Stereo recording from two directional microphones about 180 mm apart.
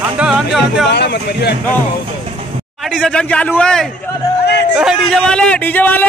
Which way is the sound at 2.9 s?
5° left (ahead or behind).